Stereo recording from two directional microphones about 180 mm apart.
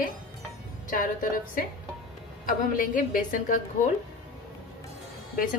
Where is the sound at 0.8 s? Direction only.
50° left (ahead or behind).